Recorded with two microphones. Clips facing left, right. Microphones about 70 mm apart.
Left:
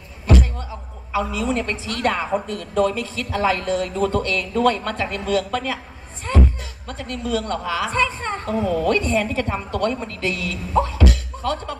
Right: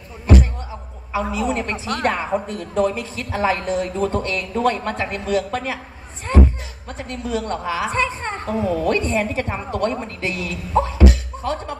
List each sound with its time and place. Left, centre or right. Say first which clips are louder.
0.3 s a sound: right 2 dB; right
1.3 s a woman's voice: right 1 dB; right
6.9 s a woman's voice: left 1 dB; right